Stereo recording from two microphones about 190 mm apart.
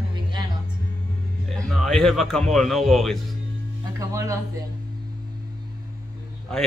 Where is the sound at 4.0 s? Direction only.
15° right (ahead or behind).